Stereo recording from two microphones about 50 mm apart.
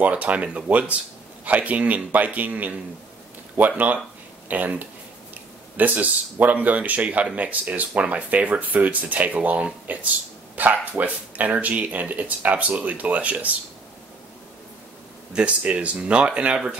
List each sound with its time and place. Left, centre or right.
0.0 s speech: right
15.3 s speech: right